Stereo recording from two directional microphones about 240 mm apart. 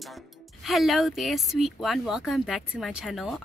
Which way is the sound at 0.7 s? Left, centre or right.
Centre.